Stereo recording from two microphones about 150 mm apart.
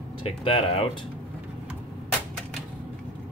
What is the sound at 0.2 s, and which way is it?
Speech, 40° left (ahead or behind).